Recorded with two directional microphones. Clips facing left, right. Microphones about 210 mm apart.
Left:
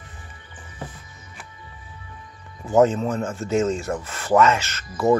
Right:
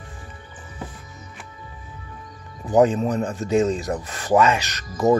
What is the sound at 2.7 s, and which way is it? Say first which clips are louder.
Speech: even; 15° right (ahead or behind).